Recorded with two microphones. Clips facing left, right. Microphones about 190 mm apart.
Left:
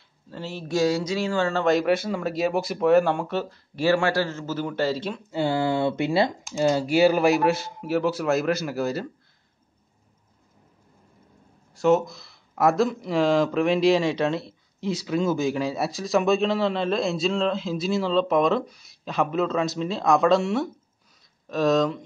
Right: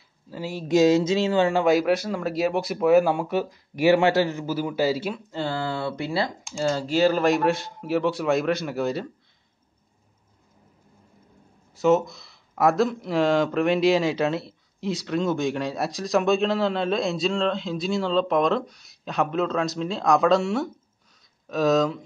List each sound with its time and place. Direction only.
0.3 s speech: 10° right (ahead or behind)
5.3 s speech: 15° left (ahead or behind)
11.7 s speech: centre (ahead or behind)